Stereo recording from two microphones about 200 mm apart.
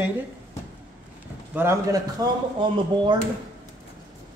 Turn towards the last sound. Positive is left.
turn(degrees=-20)  # may be behind; listen again after turning